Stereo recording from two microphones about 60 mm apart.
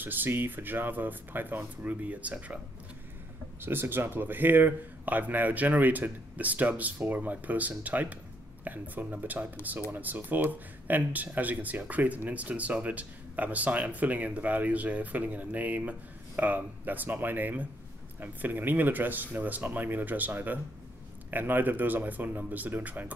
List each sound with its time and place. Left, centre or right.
0.0 s speech: right
3.6 s speech: right